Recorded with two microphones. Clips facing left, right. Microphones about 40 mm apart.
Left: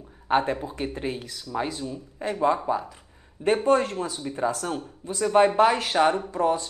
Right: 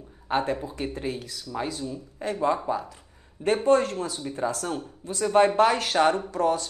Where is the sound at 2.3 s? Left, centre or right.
Centre.